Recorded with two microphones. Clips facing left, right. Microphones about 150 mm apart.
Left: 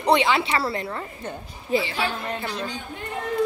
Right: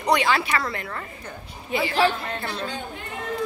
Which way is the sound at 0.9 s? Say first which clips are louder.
Left 3 dB; 20° left (ahead or behind).